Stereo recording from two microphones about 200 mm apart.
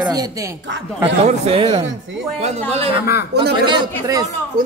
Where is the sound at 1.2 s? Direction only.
30° right (ahead or behind).